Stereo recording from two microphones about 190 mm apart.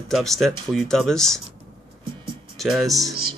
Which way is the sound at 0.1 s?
Centre (ahead or behind).